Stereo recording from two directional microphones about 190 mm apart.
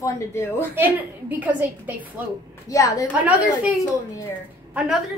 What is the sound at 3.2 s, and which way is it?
Speech, 10° right (ahead or behind).